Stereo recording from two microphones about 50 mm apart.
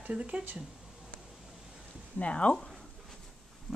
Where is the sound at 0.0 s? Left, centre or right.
Right.